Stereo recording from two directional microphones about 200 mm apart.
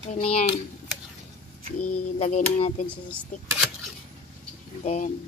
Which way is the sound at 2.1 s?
35° left (ahead or behind).